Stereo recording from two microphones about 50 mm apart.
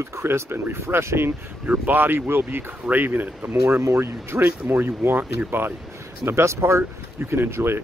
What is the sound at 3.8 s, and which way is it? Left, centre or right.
Speech, right.